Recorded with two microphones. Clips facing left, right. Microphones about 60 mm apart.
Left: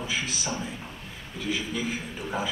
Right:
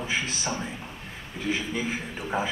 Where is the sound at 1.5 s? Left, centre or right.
Right.